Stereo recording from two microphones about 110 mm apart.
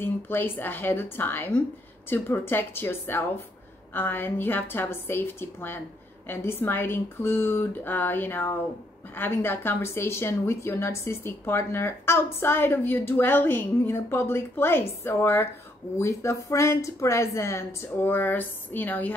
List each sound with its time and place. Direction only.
0.0 s a woman's voice: 20° left (ahead or behind)